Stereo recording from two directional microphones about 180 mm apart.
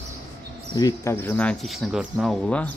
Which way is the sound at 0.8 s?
15° left (ahead or behind).